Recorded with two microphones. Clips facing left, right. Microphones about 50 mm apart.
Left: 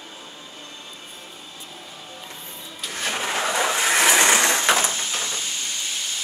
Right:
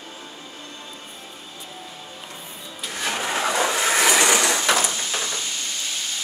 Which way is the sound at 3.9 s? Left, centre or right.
Left.